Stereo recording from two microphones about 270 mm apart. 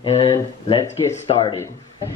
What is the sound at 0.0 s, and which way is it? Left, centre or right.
Speech, centre.